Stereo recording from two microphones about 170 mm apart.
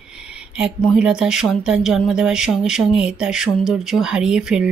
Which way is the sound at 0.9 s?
5° right (ahead or behind).